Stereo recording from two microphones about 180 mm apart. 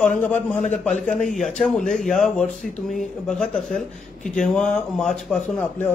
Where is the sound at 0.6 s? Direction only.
40° left (ahead or behind).